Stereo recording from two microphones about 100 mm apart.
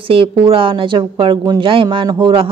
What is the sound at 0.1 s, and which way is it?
A woman's voice, 60° right (ahead or behind).